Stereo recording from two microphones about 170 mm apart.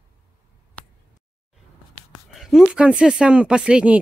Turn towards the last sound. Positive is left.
turn(degrees=-5)  # may be behind; listen again after turning